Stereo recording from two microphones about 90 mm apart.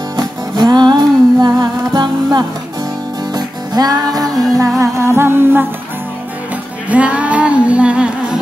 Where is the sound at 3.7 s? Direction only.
45° right (ahead or behind).